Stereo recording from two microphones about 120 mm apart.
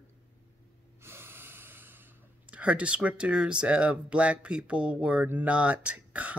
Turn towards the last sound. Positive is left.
turn(degrees=-10)  # may be behind; listen again after turning